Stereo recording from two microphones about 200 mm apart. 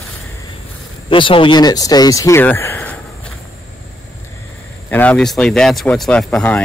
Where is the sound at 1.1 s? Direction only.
25° left (ahead or behind); by 3.3 s 5° left (ahead or behind).